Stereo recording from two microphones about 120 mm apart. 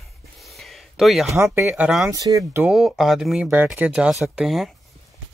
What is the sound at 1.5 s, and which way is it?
Speech, 15° right (ahead or behind).